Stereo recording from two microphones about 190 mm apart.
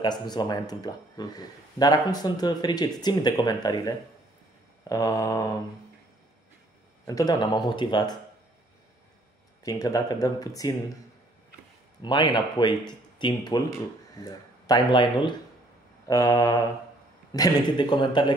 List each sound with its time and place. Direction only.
0.0 s speech: 20° left (ahead or behind)
7.1 s speech: 20° left (ahead or behind)
9.6 s speech: 20° left (ahead or behind)
12.0 s speech: 25° left (ahead or behind)